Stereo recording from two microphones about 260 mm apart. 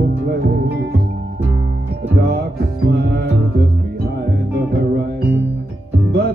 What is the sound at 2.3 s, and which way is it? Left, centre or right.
Music, right.